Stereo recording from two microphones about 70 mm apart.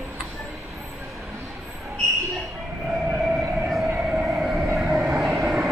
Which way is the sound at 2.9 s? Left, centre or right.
Centre.